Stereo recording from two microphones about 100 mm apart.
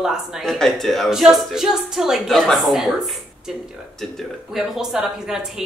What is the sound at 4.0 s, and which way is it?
A woman's voice, centre (ahead or behind).